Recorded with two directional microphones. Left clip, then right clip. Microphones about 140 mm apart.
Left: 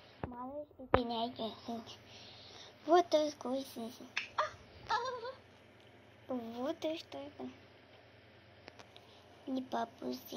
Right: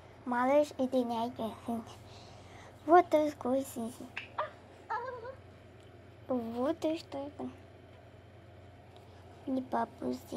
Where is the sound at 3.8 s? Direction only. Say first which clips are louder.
Right 5 dB; centre (ahead or behind).